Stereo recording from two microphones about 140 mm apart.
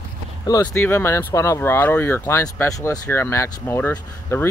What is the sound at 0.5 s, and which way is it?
Speech, 25° left (ahead or behind).